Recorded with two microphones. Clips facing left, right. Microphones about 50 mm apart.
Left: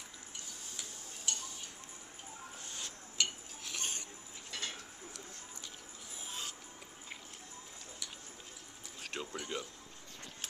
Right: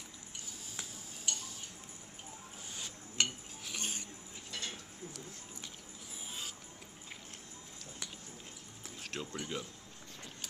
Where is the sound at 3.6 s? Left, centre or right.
Centre.